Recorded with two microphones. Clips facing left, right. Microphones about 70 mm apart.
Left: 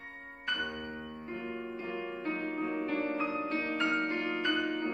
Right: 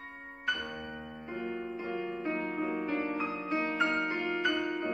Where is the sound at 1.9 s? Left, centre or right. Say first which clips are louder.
Right 2 dB; centre.